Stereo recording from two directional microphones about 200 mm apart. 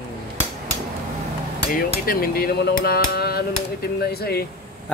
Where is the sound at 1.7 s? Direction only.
45° left (ahead or behind).